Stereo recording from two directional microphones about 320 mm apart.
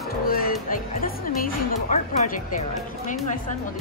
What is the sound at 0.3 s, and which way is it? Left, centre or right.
Music, left.